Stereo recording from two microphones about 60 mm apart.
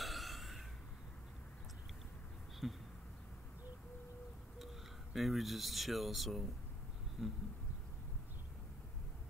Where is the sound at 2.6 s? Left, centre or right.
Centre.